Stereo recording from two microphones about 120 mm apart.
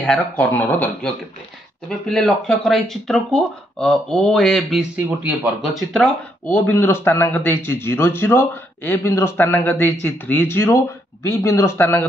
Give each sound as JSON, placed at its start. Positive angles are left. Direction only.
{"t": 0.0, "sound": "speech", "side_deg": 10}
{"t": 1.9, "sound": "speech", "side_deg": 5}
{"t": 4.9, "sound": "speech", "side_deg": -15}
{"t": 6.0, "sound": "speech", "side_deg": 15}